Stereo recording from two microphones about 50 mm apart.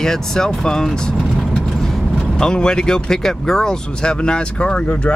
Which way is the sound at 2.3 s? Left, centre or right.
Centre.